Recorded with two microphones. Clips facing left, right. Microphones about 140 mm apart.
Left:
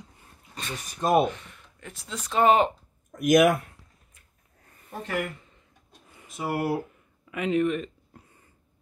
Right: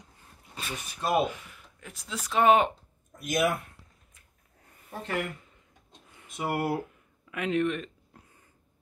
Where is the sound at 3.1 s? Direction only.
90° left.